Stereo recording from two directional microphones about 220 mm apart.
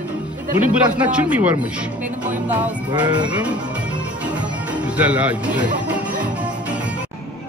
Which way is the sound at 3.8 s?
5° right (ahead or behind).